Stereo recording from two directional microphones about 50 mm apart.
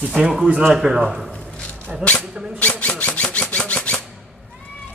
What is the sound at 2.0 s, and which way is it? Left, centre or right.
Speech, left.